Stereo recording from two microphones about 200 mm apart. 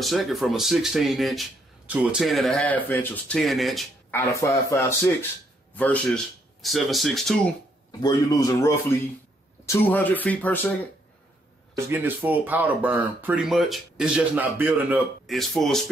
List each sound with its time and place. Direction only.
0.0 s speech: centre (ahead or behind)
4.1 s speech: 15° left (ahead or behind)
8.0 s speech: 15° left (ahead or behind)
11.9 s speech: 10° right (ahead or behind)